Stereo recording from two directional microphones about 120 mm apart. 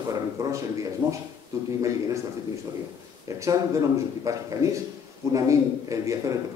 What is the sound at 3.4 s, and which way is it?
A man's voice, 25° right (ahead or behind).